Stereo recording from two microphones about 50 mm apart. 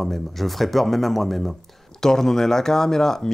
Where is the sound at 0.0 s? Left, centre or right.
Centre.